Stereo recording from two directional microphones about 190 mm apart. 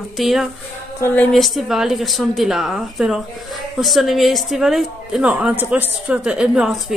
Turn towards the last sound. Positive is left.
turn(degrees=-5)  # may be behind; listen again after turning